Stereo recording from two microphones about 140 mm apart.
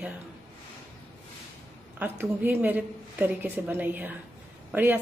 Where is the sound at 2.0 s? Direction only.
15° right (ahead or behind).